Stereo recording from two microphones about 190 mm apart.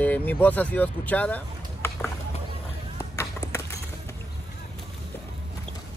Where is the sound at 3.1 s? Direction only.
15° left (ahead or behind).